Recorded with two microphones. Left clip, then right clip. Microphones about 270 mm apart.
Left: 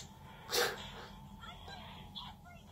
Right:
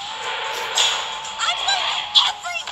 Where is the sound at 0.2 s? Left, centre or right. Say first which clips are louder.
Right 9 dB; right.